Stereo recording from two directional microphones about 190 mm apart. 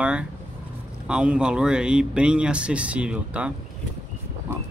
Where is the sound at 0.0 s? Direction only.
5° right (ahead or behind).